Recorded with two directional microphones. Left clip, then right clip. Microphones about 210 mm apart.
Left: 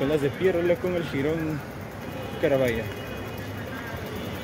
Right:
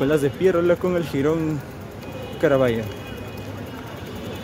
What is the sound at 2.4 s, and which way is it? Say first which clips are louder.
Speech: right 5 dB; 30° right (ahead or behind).